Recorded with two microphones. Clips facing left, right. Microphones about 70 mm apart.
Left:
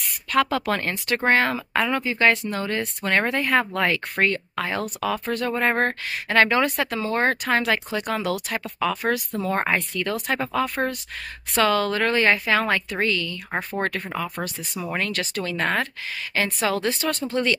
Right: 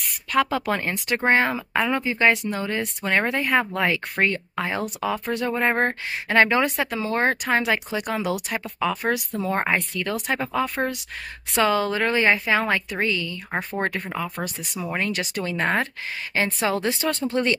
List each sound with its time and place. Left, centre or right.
0.3 s speech: centre
11.5 s speech: centre
13.5 s speech: centre
13.9 s speech: centre
14.3 s speech: centre
15.0 s speech: centre